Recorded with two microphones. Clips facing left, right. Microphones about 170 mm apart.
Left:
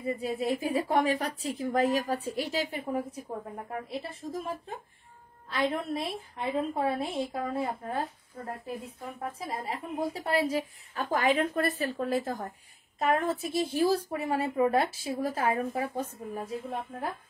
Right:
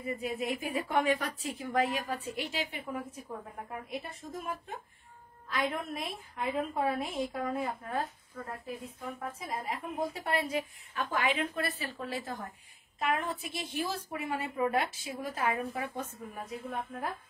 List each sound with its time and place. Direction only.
0.0 s a woman's voice: 30° left (ahead or behind)
5.5 s a woman's voice: 30° left (ahead or behind)
9.2 s a woman's voice: 30° left (ahead or behind)